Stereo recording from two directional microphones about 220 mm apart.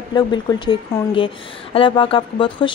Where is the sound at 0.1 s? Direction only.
20° left (ahead or behind).